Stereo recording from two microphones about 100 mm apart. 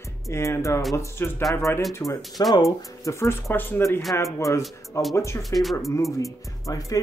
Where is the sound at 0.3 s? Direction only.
30° left (ahead or behind).